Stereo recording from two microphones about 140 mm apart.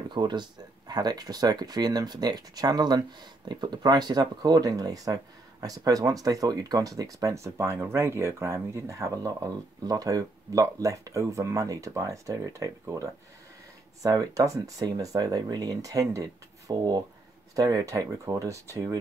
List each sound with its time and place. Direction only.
0.1 s speech: 30° right (ahead or behind)